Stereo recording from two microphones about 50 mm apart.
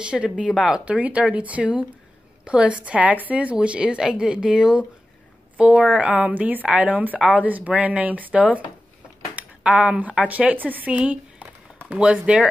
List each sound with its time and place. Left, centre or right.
0.0 s speech: right
9.3 s a sound: right
9.7 s speech: right
10.9 s speech: right